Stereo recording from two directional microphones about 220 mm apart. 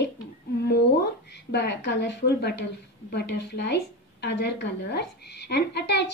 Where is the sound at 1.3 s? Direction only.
50° left (ahead or behind).